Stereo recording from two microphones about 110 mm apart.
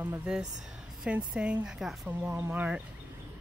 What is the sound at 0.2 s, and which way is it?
Speech, 5° right (ahead or behind).